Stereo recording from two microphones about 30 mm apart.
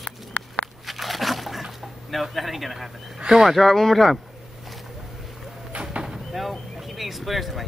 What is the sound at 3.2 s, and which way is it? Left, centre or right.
Speech, right.